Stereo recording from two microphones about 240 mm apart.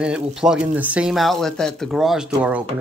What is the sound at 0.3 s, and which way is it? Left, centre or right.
Speech, centre.